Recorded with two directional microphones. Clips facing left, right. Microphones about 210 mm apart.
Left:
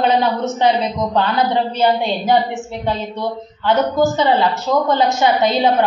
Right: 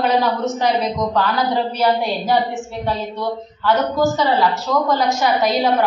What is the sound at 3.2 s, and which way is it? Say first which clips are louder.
Speech: even; 20° left (ahead or behind).